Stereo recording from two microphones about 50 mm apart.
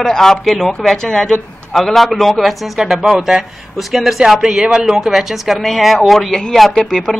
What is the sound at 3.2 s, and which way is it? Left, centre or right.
Speech, centre.